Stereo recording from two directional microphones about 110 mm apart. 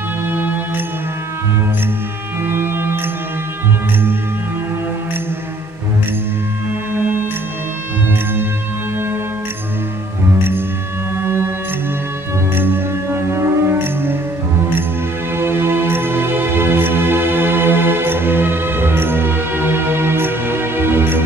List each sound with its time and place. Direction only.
0.3 s music: 20° right (ahead or behind)
2.4 s music: 20° right (ahead or behind)
6.9 s music: 20° right (ahead or behind)
11.1 s music: 20° right (ahead or behind)
12.5 s music: 20° right (ahead or behind)
15.3 s music: 20° right (ahead or behind)